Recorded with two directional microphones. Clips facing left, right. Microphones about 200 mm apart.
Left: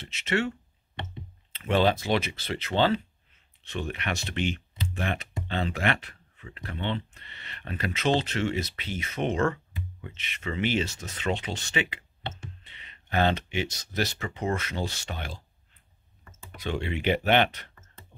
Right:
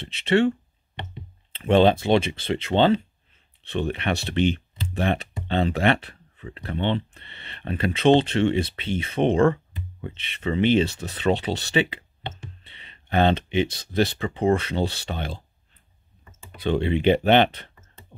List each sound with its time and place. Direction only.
0.1 s speech: 30° right (ahead or behind)
16.6 s speech: 30° right (ahead or behind)